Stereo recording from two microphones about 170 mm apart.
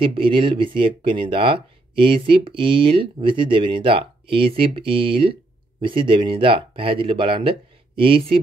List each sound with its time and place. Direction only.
0.0 s speech: 30° right (ahead or behind)